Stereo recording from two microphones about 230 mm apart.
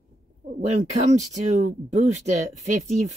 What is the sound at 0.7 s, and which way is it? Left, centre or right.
Speech, right.